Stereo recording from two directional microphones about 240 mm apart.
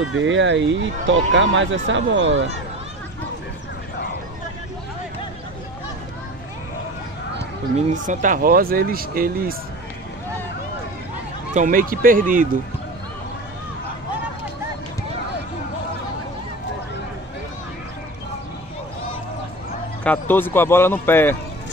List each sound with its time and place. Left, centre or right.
0.1 s speech: right
7.7 s speech: right
11.5 s speech: right
20.0 s a man's voice: centre